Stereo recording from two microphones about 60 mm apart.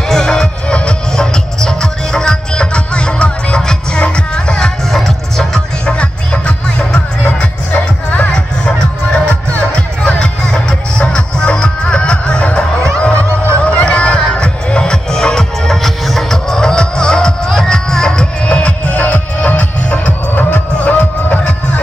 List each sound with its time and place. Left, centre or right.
0.1 s music: centre